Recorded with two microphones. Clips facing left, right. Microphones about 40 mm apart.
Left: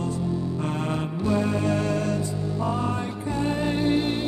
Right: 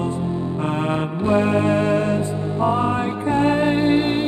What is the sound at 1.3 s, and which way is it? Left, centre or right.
Music, right.